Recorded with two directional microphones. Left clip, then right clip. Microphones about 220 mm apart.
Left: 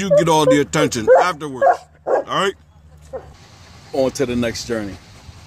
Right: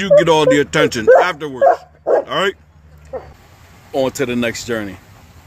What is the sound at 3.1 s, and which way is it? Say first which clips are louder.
Vehicle: right 3 dB; 40° right (ahead or behind).